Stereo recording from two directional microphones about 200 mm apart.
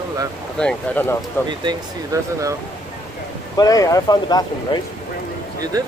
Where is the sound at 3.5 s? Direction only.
15° left (ahead or behind).